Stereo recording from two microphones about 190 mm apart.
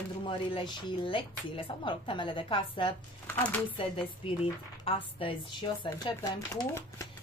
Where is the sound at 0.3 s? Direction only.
25° left (ahead or behind).